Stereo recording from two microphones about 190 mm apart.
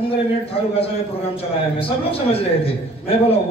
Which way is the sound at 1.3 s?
30° left (ahead or behind).